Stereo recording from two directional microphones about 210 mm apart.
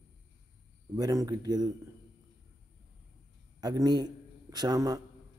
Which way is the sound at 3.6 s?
20° right (ahead or behind).